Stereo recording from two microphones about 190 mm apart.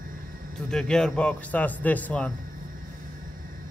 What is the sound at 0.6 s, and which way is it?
A man's voice, 5° left (ahead or behind).